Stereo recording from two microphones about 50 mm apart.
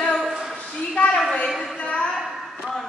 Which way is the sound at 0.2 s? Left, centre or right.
Centre.